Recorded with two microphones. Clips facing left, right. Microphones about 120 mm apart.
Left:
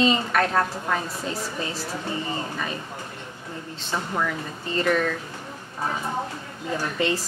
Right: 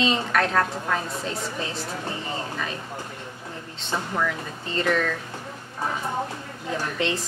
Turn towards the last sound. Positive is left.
turn(degrees=0)  # may be behind; listen again after turning